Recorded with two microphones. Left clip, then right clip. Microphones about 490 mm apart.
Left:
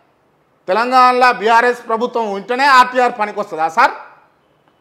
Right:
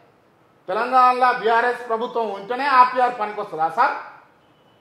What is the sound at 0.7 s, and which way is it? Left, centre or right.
A man's voice, left.